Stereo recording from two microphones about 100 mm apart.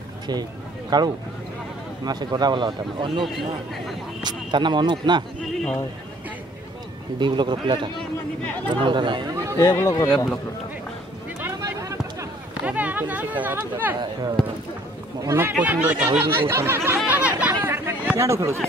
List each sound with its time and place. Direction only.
0.3 s a man's voice: 45° right (ahead or behind)
3.3 s speech: centre (ahead or behind)
4.2 s a man's voice: 50° right (ahead or behind)
5.4 s a man's voice: 5° left (ahead or behind)
7.2 s a man's voice: 50° right (ahead or behind)
8.0 s speech: 15° left (ahead or behind)
8.6 s a man's voice: 55° right (ahead or behind)
9.3 s chatter: 35° right (ahead or behind)
9.6 s speech: 25° left (ahead or behind)
11.8 s a sound: 30° right (ahead or behind)
12.6 s speech: 15° right (ahead or behind)
15.2 s speech: 20° right (ahead or behind)
16.2 s chatter: 25° right (ahead or behind)
18.1 s speech: 30° right (ahead or behind)